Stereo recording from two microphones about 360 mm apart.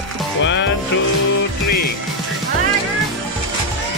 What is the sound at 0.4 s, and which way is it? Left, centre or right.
Music, left.